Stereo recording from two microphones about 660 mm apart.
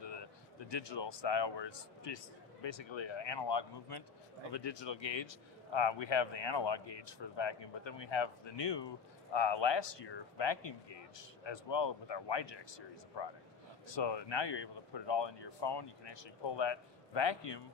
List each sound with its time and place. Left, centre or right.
0.7 s a man's voice: left